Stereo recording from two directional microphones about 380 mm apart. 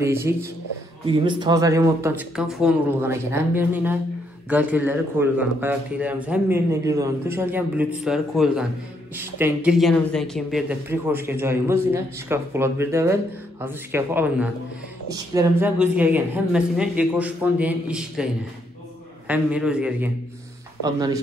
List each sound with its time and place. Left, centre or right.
0.0 s speech: centre